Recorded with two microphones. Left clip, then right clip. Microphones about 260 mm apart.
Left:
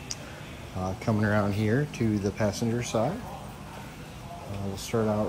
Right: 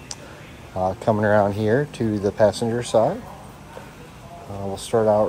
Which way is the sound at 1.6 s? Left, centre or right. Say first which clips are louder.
Right 7 dB; right.